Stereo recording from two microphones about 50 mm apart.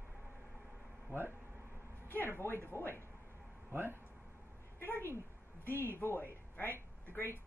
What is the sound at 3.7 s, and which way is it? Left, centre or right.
Speech, right.